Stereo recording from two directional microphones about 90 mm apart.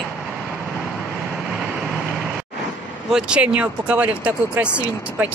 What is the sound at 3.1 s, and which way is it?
Speech, 10° right (ahead or behind).